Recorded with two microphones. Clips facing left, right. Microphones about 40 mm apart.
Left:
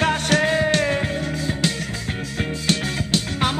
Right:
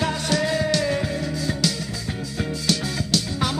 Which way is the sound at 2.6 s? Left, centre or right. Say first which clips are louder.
Left 2 dB; left.